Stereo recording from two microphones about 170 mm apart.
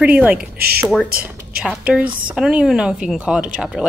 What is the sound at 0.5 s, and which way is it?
Speech, 65° right (ahead or behind).